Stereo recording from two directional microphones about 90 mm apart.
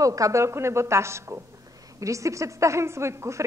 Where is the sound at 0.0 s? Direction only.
40° right (ahead or behind).